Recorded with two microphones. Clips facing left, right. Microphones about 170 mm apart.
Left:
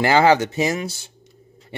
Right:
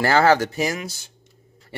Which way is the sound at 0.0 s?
15° left (ahead or behind).